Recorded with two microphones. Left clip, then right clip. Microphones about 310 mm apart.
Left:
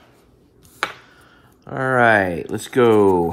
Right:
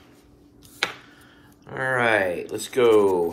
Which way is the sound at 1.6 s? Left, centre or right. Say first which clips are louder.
Left 6 dB; centre.